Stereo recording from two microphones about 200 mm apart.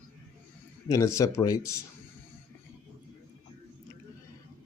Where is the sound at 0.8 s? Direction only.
15° left (ahead or behind).